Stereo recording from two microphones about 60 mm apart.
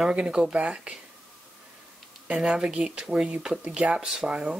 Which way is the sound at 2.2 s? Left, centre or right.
Centre.